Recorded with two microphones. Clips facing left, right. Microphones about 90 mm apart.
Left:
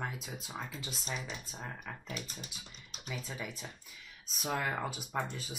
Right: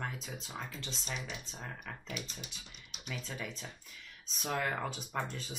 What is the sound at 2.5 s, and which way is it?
Speech, centre (ahead or behind).